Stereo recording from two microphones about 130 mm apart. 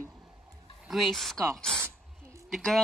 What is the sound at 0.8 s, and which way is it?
Speech, centre (ahead or behind).